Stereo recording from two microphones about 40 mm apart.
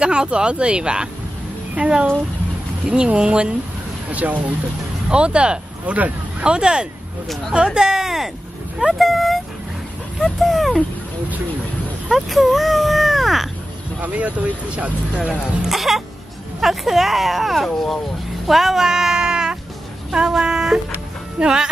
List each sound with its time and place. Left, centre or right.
0.0 s speech: right
4.1 s speech: right
5.1 s speech: right; by 8.3 s centre
8.9 s speech: centre
12.1 s speech: centre
14.0 s speech: right
15.7 s speech: centre